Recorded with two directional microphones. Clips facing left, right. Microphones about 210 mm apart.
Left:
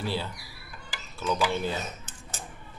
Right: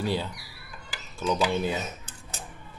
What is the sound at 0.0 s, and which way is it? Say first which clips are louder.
Speech: right 3 dB; 15° right (ahead or behind).